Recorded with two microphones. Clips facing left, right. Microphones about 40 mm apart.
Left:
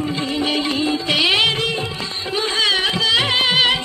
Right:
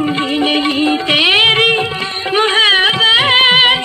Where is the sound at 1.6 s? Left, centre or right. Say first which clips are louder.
Right 10 dB; right.